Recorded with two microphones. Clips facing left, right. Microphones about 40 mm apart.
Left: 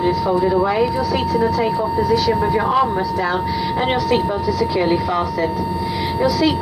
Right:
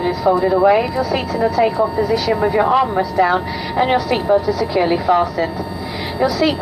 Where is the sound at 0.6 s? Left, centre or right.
Centre.